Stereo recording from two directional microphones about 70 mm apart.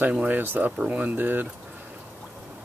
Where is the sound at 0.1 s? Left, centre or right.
Right.